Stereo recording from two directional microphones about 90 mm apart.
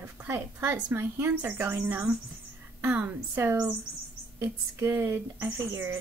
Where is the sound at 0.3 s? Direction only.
25° right (ahead or behind).